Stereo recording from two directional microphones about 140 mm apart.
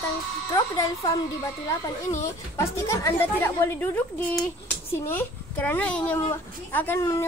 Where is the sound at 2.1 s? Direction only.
20° left (ahead or behind).